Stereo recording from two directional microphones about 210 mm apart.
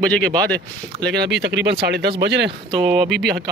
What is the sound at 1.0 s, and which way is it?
Speech, 55° right (ahead or behind).